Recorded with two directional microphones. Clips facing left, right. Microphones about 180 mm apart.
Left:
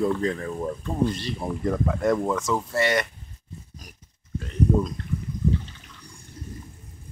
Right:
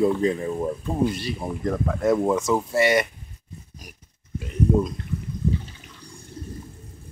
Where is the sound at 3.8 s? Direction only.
10° right (ahead or behind).